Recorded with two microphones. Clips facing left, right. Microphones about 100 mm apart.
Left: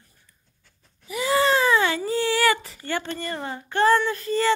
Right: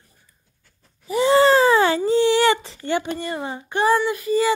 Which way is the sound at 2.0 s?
20° right (ahead or behind).